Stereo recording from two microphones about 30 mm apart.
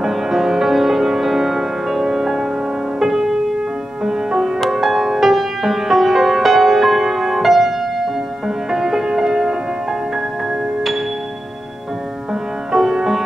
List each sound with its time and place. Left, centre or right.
0.0 s music: centre
8.7 s music: centre
12.9 s music: centre